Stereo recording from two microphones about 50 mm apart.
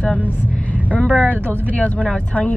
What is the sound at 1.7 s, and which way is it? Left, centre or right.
Speech, left.